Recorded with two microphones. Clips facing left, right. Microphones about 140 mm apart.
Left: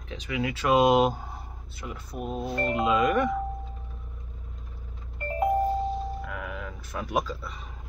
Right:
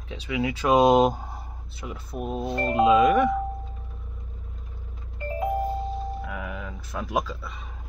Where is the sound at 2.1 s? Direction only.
20° right (ahead or behind).